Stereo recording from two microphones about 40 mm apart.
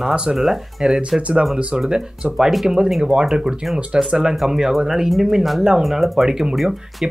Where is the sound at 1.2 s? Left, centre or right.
Right.